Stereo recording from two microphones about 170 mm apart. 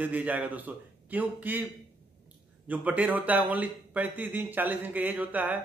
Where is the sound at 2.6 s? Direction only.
10° right (ahead or behind).